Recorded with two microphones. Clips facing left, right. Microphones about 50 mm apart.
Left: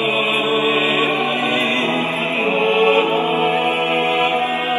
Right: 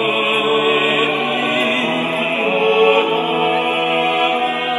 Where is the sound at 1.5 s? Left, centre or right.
Centre.